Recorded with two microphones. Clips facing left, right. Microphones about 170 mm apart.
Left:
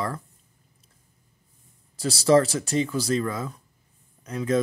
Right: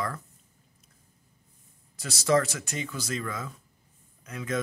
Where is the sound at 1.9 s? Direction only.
30° left (ahead or behind).